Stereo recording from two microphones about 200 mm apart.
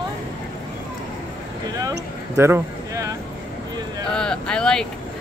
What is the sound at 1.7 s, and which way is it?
Speech, 15° right (ahead or behind).